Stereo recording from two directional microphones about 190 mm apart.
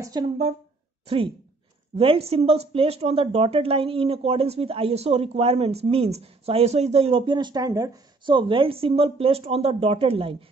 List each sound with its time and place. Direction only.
0.2 s a woman's voice: 20° right (ahead or behind)